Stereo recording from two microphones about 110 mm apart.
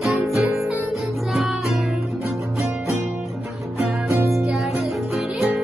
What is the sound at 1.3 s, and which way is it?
Music, centre (ahead or behind).